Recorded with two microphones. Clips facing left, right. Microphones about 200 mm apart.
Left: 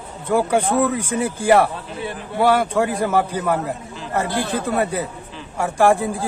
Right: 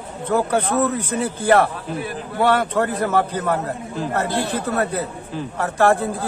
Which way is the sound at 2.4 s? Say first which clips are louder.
Left 1 dB; 10° left (ahead or behind).